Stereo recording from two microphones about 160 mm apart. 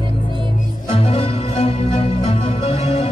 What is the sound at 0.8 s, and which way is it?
Music, 35° left (ahead or behind).